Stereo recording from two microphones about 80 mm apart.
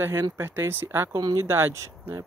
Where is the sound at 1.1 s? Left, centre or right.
Right.